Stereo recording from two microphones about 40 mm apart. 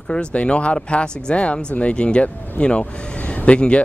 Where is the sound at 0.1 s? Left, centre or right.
Left.